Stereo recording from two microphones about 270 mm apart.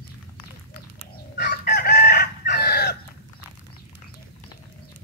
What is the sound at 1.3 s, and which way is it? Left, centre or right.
Chicken, left.